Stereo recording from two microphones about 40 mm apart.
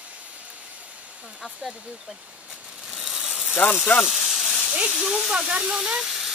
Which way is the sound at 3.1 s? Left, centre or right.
Right.